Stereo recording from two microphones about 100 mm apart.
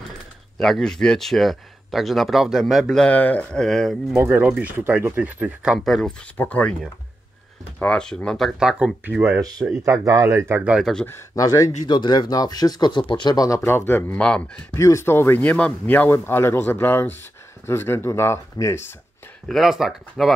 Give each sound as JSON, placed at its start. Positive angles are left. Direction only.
{"t": 0.6, "sound": "speech", "side_deg": 5}
{"t": 3.0, "sound": "speech", "side_deg": 15}
{"t": 4.2, "sound": "speech", "side_deg": -20}
{"t": 5.9, "sound": "speech", "side_deg": 0}
{"t": 6.3, "sound": "speech", "side_deg": 15}
{"t": 7.8, "sound": "speech", "side_deg": 10}
{"t": 9.4, "sound": "speech", "side_deg": -40}
{"t": 10.8, "sound": "speech", "side_deg": 5}
{"t": 11.1, "sound": "speech", "side_deg": 30}
{"t": 11.9, "sound": "speech", "side_deg": 50}
{"t": 13.6, "sound": "speech", "side_deg": 25}
{"t": 14.7, "sound": "speech", "side_deg": 30}
{"t": 19.4, "sound": "speech", "side_deg": 0}